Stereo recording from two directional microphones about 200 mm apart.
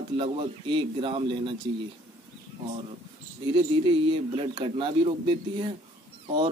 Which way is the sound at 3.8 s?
25° right (ahead or behind).